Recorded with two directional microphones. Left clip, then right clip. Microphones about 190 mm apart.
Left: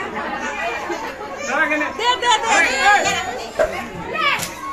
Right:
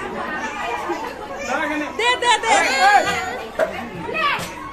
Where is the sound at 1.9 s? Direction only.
5° left (ahead or behind).